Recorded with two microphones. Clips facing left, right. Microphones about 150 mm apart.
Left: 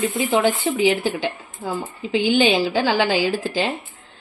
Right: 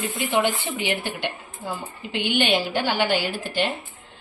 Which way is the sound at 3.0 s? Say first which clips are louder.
Left 4 dB; 90° left.